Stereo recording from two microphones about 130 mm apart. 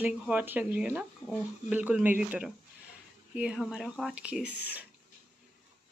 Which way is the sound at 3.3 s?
5° right (ahead or behind).